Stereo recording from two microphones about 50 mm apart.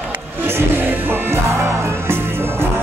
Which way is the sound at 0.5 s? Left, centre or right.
Right.